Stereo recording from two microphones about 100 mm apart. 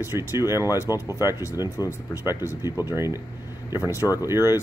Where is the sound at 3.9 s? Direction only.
35° left (ahead or behind).